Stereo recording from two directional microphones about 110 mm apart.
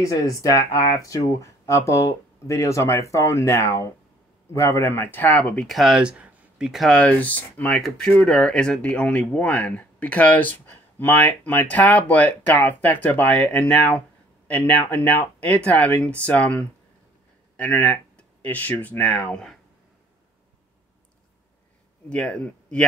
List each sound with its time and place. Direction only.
0.0 s speech: 30° left (ahead or behind); by 5.7 s 15° left (ahead or behind)
5.7 s speech: centre (ahead or behind)
7.0 s speech: 15° left (ahead or behind)
22.1 s speech: 10° left (ahead or behind)